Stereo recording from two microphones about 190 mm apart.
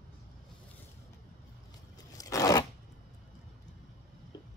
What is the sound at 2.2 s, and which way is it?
Zipper, 20° left (ahead or behind).